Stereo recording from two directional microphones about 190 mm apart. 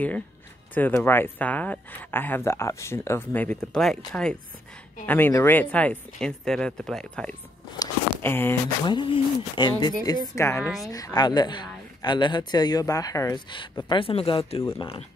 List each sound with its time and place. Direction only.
0.7 s speech: 10° left (ahead or behind)
7.8 s a sound: 10° left (ahead or behind)
8.8 s speech: 25° left (ahead or behind)